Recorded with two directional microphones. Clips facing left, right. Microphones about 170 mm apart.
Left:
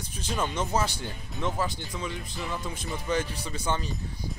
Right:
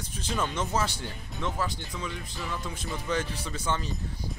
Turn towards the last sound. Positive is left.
turn(degrees=15)  # may be behind; listen again after turning